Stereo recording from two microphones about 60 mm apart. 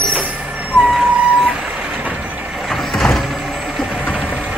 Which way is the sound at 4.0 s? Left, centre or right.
Centre.